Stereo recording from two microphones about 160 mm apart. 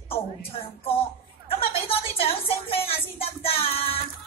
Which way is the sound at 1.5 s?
35° left (ahead or behind).